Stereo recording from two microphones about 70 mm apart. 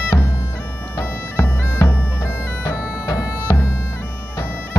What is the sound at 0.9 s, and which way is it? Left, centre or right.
Bagpipes, left.